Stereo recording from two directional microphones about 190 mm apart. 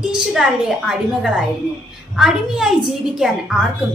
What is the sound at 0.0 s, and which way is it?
A woman's voice, centre (ahead or behind).